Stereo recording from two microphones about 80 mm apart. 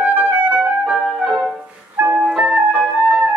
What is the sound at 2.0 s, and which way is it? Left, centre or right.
Music, centre.